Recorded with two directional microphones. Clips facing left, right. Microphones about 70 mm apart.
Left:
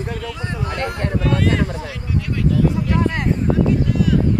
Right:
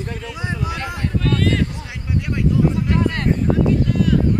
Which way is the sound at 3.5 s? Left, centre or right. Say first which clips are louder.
Left 1 dB; centre.